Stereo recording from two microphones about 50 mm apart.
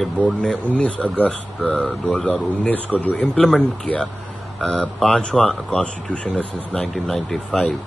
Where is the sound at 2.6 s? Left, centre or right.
Left.